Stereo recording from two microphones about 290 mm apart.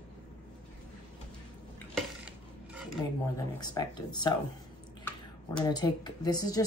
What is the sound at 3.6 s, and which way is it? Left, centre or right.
Speech, centre.